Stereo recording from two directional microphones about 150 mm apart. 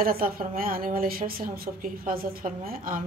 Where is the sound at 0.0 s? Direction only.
75° right (ahead or behind).